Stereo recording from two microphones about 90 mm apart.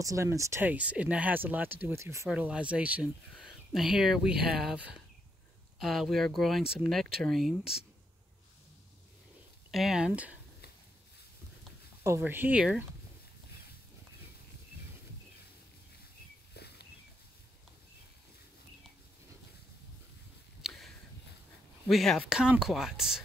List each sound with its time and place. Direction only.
0.0 s speech: 35° right (ahead or behind)
0.7 s speech: 15° right (ahead or behind); by 2.2 s 30° right (ahead or behind)
2.2 s speech: 15° right (ahead or behind)
3.3 s speech: 5° right (ahead or behind)
5.8 s speech: centre (ahead or behind)
9.7 s speech: 5° right (ahead or behind)
12.2 s speech: 20° right (ahead or behind)
20.6 s a sound: centre (ahead or behind)
21.8 s speech: centre (ahead or behind)